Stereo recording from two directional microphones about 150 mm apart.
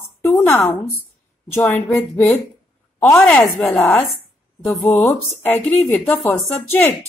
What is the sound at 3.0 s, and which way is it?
Speech, 10° left (ahead or behind).